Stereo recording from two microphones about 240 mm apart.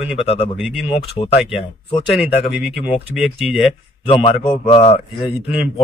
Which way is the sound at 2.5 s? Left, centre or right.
Centre.